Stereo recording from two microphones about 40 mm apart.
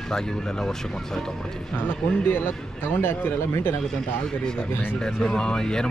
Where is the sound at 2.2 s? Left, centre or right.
Left.